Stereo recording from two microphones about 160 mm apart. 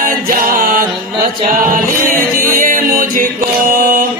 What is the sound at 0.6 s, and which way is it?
Music, 60° right (ahead or behind).